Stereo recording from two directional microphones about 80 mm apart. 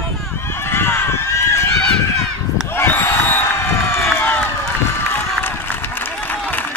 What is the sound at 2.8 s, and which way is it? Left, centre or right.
Crowd, left.